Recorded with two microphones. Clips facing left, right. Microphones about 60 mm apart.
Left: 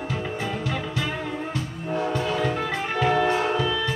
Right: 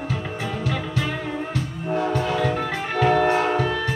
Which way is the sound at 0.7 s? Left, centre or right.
Right.